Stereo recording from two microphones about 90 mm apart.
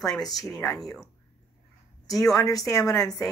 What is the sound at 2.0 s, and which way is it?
Speech, centre (ahead or behind).